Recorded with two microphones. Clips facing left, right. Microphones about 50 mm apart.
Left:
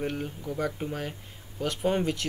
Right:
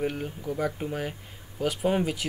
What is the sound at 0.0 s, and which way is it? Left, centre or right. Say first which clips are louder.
Speech: right 2 dB; centre.